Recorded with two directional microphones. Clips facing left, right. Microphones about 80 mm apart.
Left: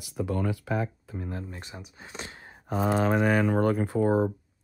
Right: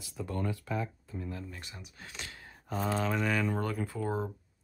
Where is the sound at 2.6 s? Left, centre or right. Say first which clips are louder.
Left 7 dB; left.